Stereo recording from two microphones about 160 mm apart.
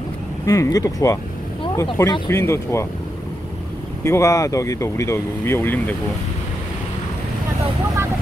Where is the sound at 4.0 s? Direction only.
20° left (ahead or behind).